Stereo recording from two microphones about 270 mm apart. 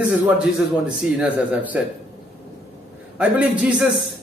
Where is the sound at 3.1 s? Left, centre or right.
Centre.